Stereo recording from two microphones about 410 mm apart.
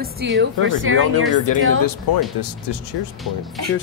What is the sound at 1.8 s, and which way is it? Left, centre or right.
Speech, left.